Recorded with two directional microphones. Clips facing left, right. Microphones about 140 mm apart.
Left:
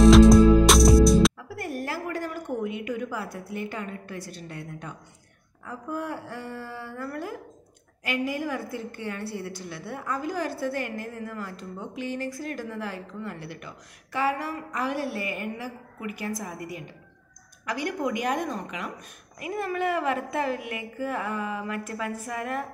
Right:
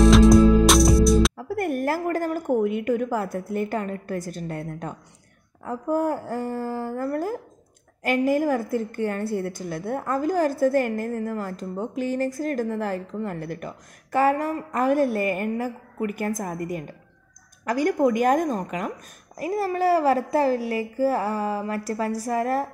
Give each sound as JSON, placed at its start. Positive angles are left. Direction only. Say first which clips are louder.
{"t": 0.0, "sound": "music", "louder": "even", "side_deg": 0}
{"t": 1.5, "sound": "a woman's voice", "louder": "right 8 dB", "side_deg": -55}